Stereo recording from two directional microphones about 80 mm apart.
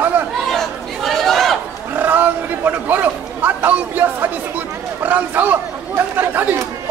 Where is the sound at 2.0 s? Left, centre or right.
Right.